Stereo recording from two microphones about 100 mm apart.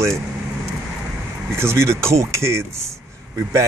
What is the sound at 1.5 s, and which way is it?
Speech, 25° right (ahead or behind).